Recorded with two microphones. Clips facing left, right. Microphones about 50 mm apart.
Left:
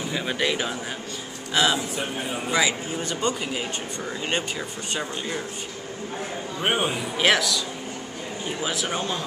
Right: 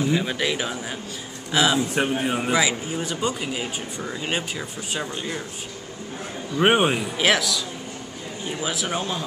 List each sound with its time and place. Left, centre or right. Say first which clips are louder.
0.0 s speech: right 3 dB; centre
2.0 s a man's voice: right 7 dB; right
2.5 s speech: left 3 dB; centre
6.6 s a man's voice: right 6 dB; right
7.2 s speech: left 2 dB; centre